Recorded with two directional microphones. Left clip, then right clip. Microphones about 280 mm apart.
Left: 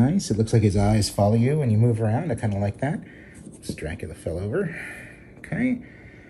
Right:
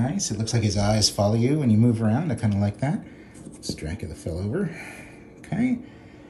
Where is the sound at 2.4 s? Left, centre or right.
Centre.